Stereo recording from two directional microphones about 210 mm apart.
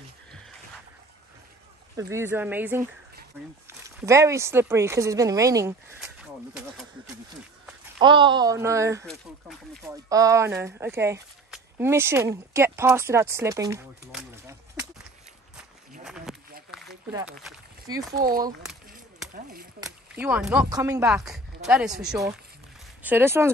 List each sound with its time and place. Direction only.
2.0 s speech: 15° right (ahead or behind)
5.9 s speech: centre (ahead or behind)
8.0 s speech: 20° right (ahead or behind)
9.0 s speech: centre (ahead or behind)
10.0 s speech: 15° right (ahead or behind)
14.1 s a sound: 10° right (ahead or behind)
16.0 s a sound: centre (ahead or behind)
17.2 s speech: 5° right (ahead or behind)
17.9 s speech: 20° right (ahead or behind)
18.7 s a sound: centre (ahead or behind)
19.3 s speech: 45° right (ahead or behind)
19.8 s speech: 10° right (ahead or behind)